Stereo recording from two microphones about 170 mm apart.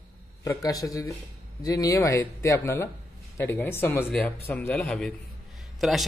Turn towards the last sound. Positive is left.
turn(degrees=0)  # may be behind; listen again after turning